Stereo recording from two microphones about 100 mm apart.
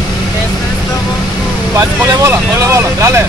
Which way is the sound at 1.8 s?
30° right (ahead or behind).